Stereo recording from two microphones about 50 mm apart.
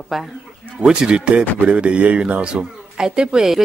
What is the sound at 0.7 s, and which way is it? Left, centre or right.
A woman's voice, centre.